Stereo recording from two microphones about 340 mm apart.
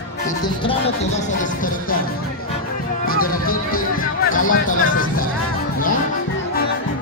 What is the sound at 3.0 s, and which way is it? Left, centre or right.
Music, left.